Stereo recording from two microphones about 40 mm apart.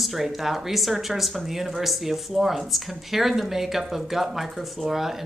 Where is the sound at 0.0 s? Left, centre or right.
Centre.